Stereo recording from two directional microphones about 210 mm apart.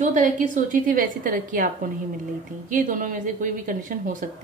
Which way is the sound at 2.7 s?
40° right (ahead or behind).